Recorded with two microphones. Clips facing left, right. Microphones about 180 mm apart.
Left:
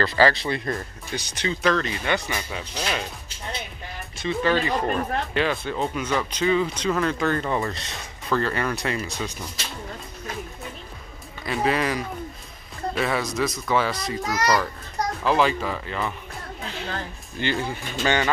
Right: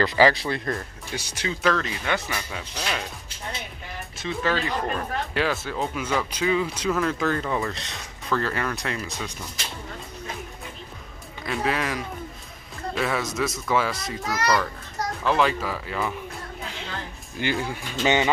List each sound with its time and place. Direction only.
0.0 s speech: 15° right (ahead or behind)
2.3 s speech: 10° left (ahead or behind)
4.2 s speech: centre (ahead or behind)
11.4 s speech: centre (ahead or behind)
14.2 s speech: 15° left (ahead or behind)
15.2 s speech: centre (ahead or behind)
17.4 s speech: 5° right (ahead or behind)
18.0 s speech: 20° right (ahead or behind)